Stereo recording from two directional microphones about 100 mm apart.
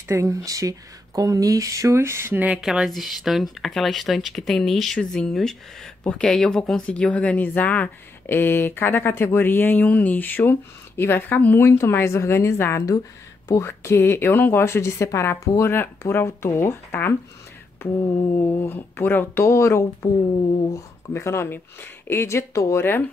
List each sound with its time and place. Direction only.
0.1 s speech: 30° right (ahead or behind)
2.6 s a woman's voice: 5° right (ahead or behind); by 23.0 s 25° left (ahead or behind)